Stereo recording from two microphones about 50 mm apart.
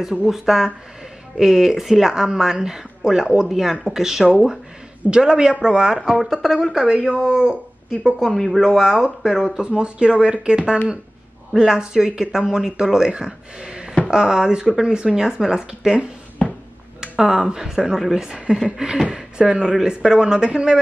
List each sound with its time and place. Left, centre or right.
0.0 s speech: centre
6.0 s speech: centre
6.7 s speech: centre
8.3 s speech: centre
8.5 s speech: centre
16.4 s a sound: centre
17.0 s a sound: centre
17.6 s speech: centre